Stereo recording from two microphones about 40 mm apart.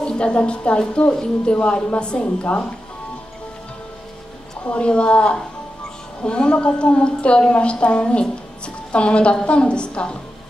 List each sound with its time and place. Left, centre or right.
0.0 s a woman's voice: left
4.6 s a woman's voice: left